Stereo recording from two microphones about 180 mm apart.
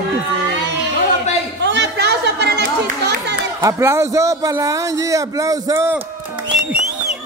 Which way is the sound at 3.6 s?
15° right (ahead or behind).